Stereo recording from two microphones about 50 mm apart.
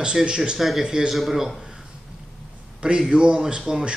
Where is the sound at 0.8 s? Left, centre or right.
Centre.